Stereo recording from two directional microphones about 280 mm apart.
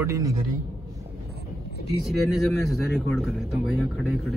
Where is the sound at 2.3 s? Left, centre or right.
Centre.